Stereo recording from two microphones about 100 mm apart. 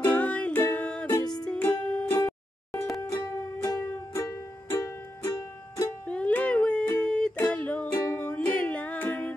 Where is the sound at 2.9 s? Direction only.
35° left (ahead or behind).